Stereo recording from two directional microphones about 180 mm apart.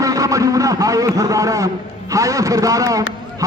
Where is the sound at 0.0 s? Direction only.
20° right (ahead or behind).